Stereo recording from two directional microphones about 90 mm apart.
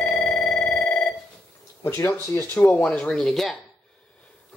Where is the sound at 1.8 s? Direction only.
25° left (ahead or behind).